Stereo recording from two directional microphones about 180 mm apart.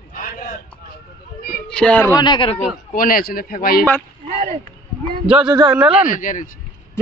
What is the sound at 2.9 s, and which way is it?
Speech, 50° left (ahead or behind).